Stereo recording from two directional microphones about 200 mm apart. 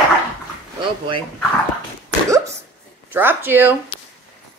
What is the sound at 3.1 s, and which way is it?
Speech, 10° right (ahead or behind).